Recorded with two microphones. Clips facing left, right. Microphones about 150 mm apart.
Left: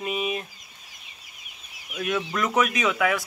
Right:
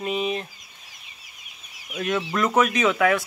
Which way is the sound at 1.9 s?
5° left (ahead or behind).